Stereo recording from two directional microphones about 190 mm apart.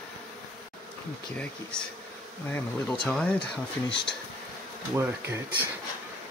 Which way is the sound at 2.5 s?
5° left (ahead or behind).